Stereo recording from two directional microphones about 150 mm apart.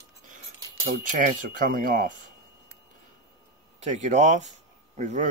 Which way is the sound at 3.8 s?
50° right (ahead or behind).